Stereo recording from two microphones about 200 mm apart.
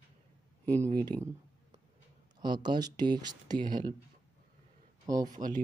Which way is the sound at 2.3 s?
20° right (ahead or behind).